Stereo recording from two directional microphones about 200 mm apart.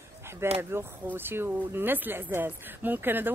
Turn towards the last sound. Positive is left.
turn(degrees=-10)  # may be behind; listen again after turning